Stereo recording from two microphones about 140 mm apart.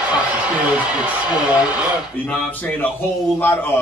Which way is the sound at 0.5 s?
10° right (ahead or behind).